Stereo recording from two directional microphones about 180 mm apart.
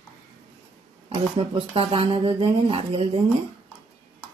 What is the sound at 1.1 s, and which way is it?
Speech, 30° right (ahead or behind).